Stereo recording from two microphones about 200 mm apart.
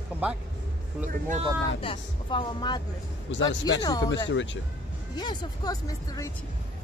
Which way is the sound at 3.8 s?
20° left (ahead or behind).